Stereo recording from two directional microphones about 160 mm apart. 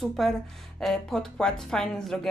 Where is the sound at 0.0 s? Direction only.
Centre (ahead or behind).